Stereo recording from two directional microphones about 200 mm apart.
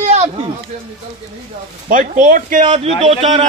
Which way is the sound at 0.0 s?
30° right (ahead or behind).